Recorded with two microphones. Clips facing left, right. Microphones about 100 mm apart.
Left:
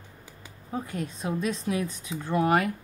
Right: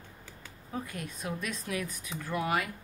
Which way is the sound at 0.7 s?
30° left (ahead or behind).